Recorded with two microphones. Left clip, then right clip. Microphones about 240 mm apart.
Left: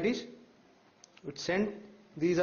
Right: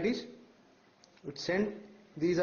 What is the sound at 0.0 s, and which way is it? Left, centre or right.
Speech, centre.